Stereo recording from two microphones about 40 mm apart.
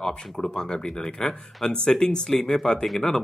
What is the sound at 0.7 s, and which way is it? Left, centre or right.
Speech, centre.